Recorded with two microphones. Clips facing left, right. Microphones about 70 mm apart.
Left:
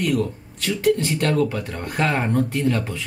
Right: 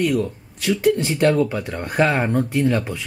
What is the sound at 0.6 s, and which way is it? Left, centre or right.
Speech, centre.